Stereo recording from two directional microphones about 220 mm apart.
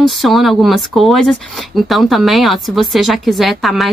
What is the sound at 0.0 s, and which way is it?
Speech, centre (ahead or behind).